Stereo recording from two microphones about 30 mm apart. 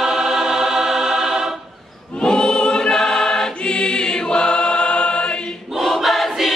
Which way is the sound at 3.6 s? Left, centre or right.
Left.